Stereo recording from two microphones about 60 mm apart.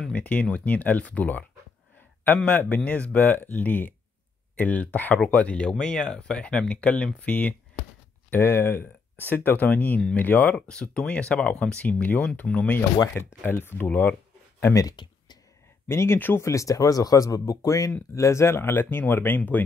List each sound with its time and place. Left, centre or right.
0.1 s speech: left
8.4 s speech: left
10.7 s speech: centre
13.5 s speech: left
14.7 s speech: left
15.9 s speech: left
16.2 s speech: left
16.4 s speech: left